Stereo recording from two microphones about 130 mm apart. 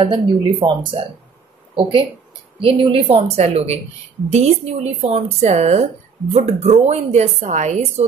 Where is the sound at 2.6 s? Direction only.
50° right (ahead or behind).